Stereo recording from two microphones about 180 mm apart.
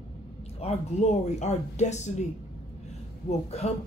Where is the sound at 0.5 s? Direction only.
40° left (ahead or behind).